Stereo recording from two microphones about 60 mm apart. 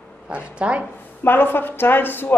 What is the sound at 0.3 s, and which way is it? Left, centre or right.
Speech, right.